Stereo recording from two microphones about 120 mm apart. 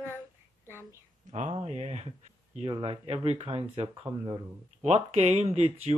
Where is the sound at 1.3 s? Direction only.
70° right (ahead or behind).